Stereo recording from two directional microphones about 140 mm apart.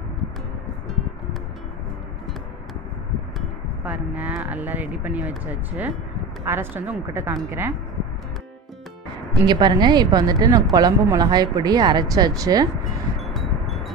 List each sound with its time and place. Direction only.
3.3 s a woman's voice: 10° right (ahead or behind)
9.5 s a woman's voice: 30° right (ahead or behind)
13.2 s a sound: centre (ahead or behind)